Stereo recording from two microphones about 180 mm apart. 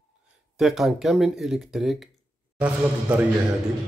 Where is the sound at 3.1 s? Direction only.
5° right (ahead or behind).